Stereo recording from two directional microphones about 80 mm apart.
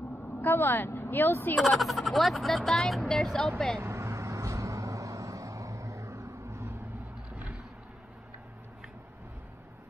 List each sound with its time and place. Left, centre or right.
0.4 s speech: left
1.8 s speech: centre
3.8 s vehicle: right